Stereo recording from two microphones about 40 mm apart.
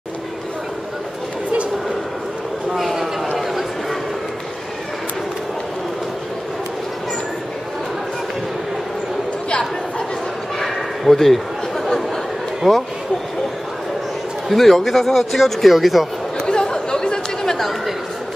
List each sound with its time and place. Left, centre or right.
2.7 s a sound: centre
9.5 s chatter: left
10.6 s a sound: centre
12.6 s speech: centre
14.5 s speech: centre
16.4 s chatter: centre
17.6 s chatter: centre